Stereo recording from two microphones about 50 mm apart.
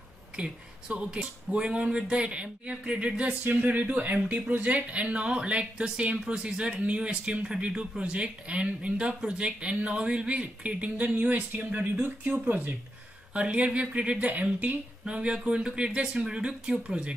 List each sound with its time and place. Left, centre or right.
0.4 s speech: centre
3.4 s speech: right
13.3 s speech: right
15.0 s speech: centre